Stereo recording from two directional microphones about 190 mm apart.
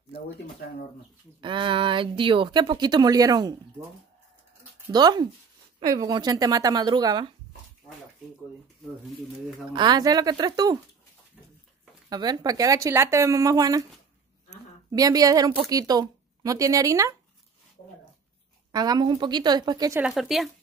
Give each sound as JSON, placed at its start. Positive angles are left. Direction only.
{"t": 1.4, "sound": "a woman's voice", "side_deg": -25}
{"t": 4.9, "sound": "a woman's voice", "side_deg": -20}
{"t": 9.7, "sound": "a woman's voice", "side_deg": -25}
{"t": 12.1, "sound": "speech", "side_deg": -20}
{"t": 14.9, "sound": "a woman's voice", "side_deg": -20}
{"t": 18.7, "sound": "a woman's voice", "side_deg": -20}
{"t": 20.0, "sound": "speech", "side_deg": 0}